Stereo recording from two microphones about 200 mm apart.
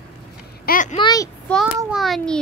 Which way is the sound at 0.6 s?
40° left (ahead or behind).